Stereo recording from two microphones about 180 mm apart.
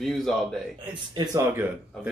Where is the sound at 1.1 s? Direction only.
20° right (ahead or behind).